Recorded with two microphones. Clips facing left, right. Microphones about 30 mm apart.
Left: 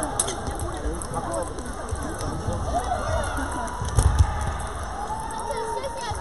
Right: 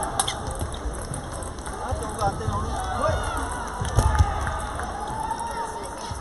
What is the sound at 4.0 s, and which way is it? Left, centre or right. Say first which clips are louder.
Music: right 3 dB; centre.